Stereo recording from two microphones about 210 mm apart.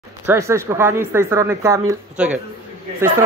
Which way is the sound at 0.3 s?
15° right (ahead or behind).